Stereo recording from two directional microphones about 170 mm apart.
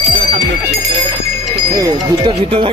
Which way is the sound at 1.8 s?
30° right (ahead or behind).